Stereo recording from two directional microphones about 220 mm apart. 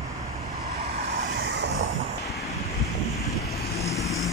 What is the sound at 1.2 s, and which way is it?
Vehicle, 50° right (ahead or behind).